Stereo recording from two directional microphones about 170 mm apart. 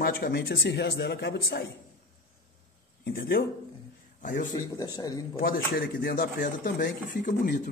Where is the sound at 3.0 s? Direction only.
65° left (ahead or behind).